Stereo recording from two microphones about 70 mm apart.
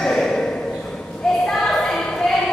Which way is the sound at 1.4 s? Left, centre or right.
Centre.